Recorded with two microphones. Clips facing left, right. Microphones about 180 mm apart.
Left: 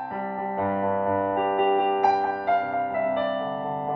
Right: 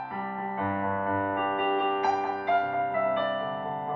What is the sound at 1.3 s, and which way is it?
Music, 45° left (ahead or behind).